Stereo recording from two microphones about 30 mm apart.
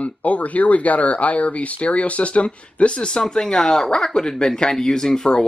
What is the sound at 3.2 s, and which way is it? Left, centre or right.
Speech, left.